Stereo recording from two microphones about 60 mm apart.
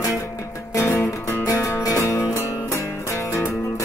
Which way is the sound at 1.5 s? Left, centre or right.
Left.